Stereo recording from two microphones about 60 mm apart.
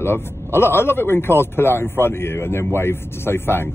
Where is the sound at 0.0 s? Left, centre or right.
Left.